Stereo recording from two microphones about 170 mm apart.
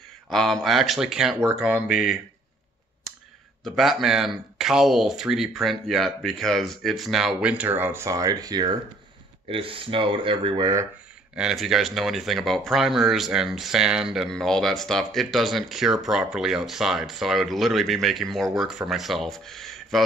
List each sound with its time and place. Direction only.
0.3 s speech: centre (ahead or behind)
3.6 s speech: centre (ahead or behind); by 10.9 s 20° right (ahead or behind)
11.3 s speech: 5° right (ahead or behind)